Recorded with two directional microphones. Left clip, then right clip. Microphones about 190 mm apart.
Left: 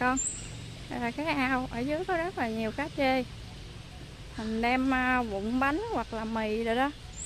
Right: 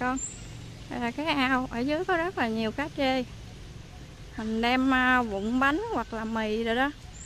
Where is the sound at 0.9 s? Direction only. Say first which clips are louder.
Right 2 dB; 15° right (ahead or behind).